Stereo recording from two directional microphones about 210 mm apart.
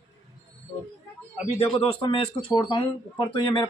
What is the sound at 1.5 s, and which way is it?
A man's voice, 25° left (ahead or behind).